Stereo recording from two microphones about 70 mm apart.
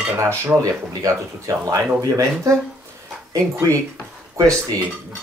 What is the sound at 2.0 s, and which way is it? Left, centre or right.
Speech, right.